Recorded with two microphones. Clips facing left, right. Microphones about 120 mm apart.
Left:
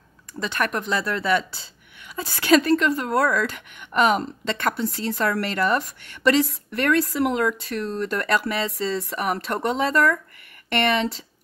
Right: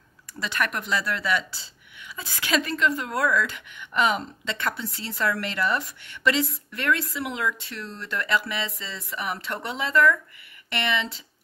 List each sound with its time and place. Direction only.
0.5 s a woman's voice: 35° left (ahead or behind)
3.3 s a woman's voice: 50° left (ahead or behind)